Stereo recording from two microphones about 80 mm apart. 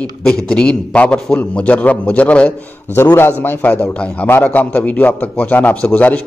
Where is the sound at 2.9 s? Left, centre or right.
Left.